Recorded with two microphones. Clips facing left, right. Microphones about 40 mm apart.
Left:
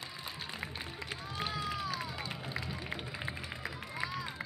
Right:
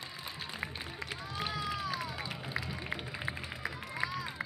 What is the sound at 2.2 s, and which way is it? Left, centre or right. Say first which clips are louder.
Run: right 1 dB; centre.